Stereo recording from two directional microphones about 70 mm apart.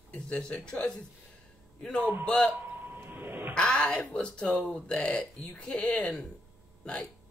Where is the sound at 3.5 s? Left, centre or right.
Centre.